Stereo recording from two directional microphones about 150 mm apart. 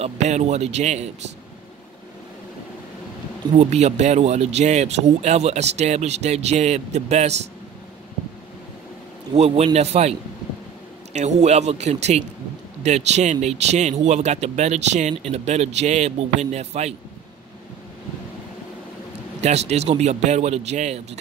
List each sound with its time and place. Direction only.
0.0 s speech: 45° right (ahead or behind)
3.5 s speech: 45° right (ahead or behind)
9.3 s speech: 45° right (ahead or behind)
11.1 s speech: 50° right (ahead or behind)
19.4 s speech: 45° right (ahead or behind)